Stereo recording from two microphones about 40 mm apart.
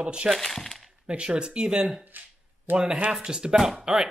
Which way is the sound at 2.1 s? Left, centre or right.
Right.